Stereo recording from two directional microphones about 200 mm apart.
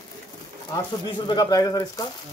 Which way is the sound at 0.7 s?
20° left (ahead or behind).